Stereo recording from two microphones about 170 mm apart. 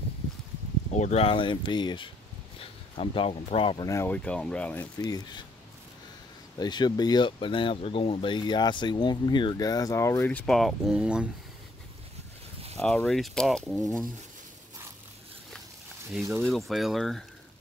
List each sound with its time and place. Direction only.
0.9 s speech: 40° left (ahead or behind); by 4.8 s 10° left (ahead or behind)
4.9 s speech: 25° left (ahead or behind)
6.6 s speech: 25° left (ahead or behind); by 11.2 s 5° right (ahead or behind)
12.7 s speech: 5° left (ahead or behind)
16.3 s speech: centre (ahead or behind)